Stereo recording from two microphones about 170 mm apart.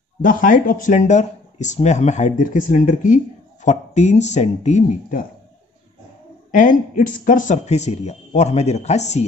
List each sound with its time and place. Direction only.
0.2 s speech: 50° left (ahead or behind)
3.6 s speech: 40° left (ahead or behind)
6.5 s speech: 50° left (ahead or behind)